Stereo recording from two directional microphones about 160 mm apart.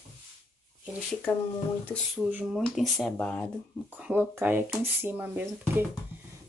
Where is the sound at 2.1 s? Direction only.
5° right (ahead or behind).